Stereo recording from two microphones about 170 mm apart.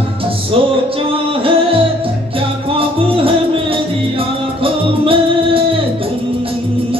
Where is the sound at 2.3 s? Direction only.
30° right (ahead or behind).